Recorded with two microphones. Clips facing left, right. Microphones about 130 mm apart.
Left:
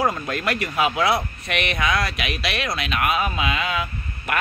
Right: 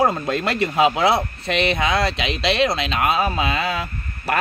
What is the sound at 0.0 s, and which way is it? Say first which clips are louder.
Speech: right 4 dB; 25° right (ahead or behind).